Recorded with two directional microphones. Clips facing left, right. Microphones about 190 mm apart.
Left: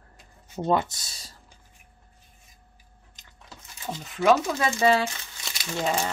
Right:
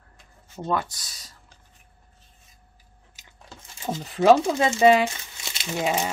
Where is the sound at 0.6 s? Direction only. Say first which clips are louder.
Left 3 dB; 20° left (ahead or behind).